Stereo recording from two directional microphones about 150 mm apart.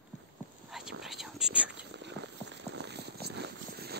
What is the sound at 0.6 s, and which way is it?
Whispering, centre (ahead or behind).